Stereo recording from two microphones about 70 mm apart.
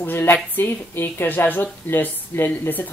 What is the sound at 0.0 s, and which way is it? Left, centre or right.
A man's voice, left.